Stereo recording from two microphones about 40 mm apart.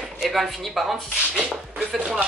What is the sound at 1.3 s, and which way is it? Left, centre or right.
Speech, right.